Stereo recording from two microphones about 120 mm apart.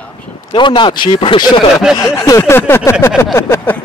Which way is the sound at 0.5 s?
40° left (ahead or behind).